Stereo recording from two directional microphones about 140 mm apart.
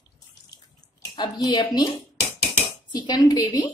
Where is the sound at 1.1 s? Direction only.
30° left (ahead or behind).